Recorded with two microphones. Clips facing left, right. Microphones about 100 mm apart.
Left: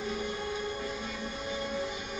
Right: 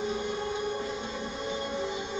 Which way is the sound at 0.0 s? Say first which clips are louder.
Right 3 dB; 25° right (ahead or behind).